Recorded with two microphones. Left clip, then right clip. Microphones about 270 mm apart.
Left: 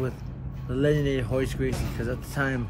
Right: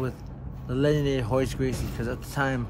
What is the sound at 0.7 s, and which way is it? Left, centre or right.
Speech, centre.